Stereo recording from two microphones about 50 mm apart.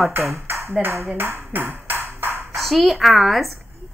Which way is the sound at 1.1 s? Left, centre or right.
Right.